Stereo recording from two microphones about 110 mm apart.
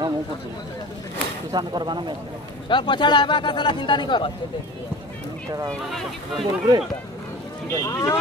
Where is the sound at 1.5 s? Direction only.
40° right (ahead or behind).